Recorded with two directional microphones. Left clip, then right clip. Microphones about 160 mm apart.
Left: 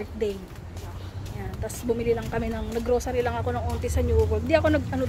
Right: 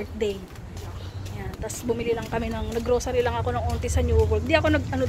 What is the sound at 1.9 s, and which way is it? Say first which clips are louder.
Speech: left 1 dB; 10° left (ahead or behind).